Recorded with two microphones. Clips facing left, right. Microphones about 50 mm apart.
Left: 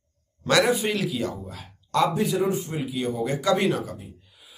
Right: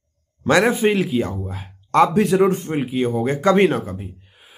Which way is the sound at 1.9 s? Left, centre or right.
Right.